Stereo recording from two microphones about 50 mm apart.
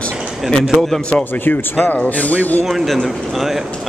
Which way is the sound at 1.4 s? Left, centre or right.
Left.